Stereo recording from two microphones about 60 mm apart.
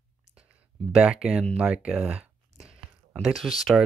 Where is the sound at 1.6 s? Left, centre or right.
Centre.